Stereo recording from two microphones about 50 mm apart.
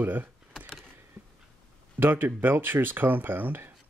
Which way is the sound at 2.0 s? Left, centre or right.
Right.